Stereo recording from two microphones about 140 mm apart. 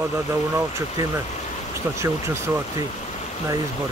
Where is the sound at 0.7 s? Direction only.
20° right (ahead or behind).